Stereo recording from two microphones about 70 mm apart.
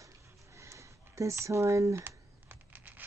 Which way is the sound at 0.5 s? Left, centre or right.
Right.